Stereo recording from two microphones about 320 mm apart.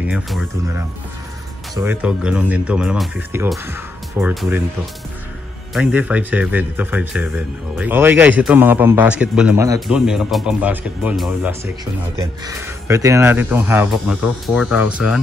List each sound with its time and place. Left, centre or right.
0.0 s speech: centre
5.8 s speech: centre